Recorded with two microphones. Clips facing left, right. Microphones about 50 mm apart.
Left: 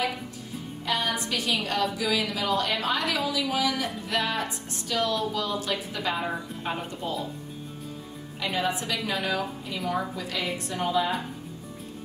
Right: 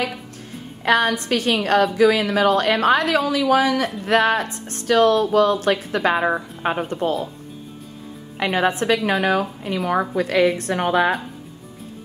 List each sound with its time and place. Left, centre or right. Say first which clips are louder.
0.8 s a woman's voice: right 10 dB; right
8.4 s a woman's voice: right 8 dB; right